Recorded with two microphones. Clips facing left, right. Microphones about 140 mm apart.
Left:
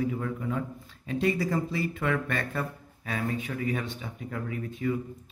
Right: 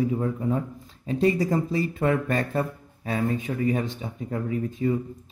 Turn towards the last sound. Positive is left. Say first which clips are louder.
# right 5 dB
turn(degrees=-30)  # may be behind; listen again after turning